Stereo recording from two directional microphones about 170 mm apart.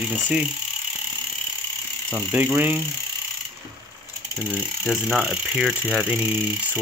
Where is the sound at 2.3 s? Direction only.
10° right (ahead or behind).